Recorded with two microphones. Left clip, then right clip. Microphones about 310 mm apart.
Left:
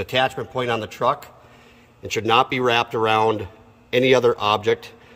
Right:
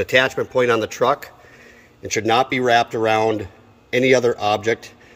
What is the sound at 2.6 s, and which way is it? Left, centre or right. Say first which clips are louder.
A man's voice: right 3 dB; centre.